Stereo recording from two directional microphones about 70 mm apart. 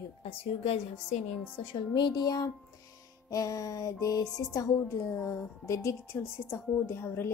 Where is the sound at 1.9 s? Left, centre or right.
Left.